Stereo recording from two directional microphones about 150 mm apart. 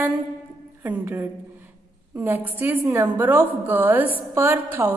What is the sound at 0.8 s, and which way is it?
Speech, 15° right (ahead or behind).